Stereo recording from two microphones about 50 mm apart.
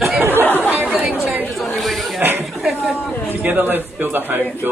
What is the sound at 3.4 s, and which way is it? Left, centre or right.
A man's voice, right.